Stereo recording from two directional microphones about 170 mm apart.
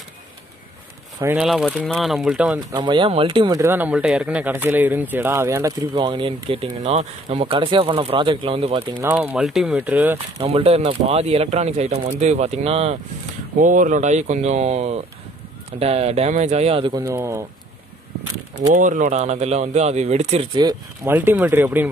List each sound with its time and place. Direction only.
1.2 s speech: 5° right (ahead or behind)
2.7 s speech: 25° right (ahead or behind)
5.9 s speech: 30° right (ahead or behind)
9.0 s speech: 10° right (ahead or behind)
10.1 s speech: 35° right (ahead or behind)
13.6 s speech: 50° right (ahead or behind)
16.9 s speech: 15° right (ahead or behind)
18.7 s speech: 50° right (ahead or behind)
20.5 s speech: 20° right (ahead or behind)